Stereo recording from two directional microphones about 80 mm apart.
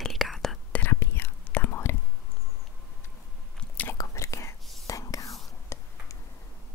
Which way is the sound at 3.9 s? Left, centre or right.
Left.